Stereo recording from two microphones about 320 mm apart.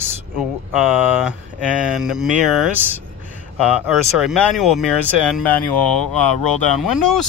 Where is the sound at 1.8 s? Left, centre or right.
Centre.